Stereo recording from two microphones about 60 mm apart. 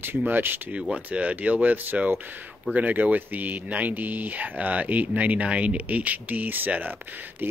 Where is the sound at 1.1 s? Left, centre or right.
Right.